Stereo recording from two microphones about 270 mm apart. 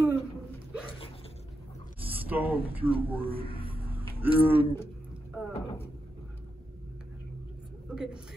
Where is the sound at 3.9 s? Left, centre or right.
Centre.